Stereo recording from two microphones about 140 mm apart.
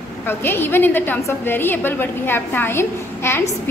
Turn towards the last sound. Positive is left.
turn(degrees=15)  # may be behind; listen again after turning